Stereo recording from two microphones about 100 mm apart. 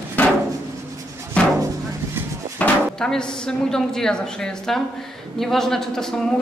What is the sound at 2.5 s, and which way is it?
A woman's voice, 10° left (ahead or behind).